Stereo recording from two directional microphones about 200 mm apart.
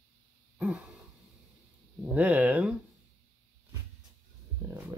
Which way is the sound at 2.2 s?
5° right (ahead or behind).